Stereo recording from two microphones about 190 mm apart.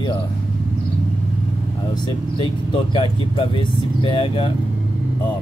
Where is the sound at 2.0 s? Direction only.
25° left (ahead or behind).